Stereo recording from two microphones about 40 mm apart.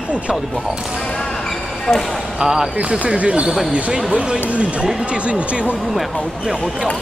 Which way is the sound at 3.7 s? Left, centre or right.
Centre.